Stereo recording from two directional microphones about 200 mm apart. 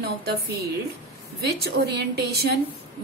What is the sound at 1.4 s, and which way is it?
A woman's voice, 55° right (ahead or behind).